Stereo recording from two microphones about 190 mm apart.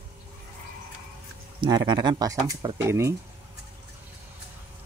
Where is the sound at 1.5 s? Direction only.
20° right (ahead or behind).